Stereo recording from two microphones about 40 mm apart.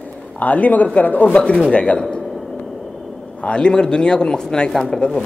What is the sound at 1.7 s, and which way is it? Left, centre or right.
Speech, left.